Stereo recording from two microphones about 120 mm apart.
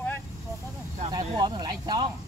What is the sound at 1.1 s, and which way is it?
Speech, 35° right (ahead or behind).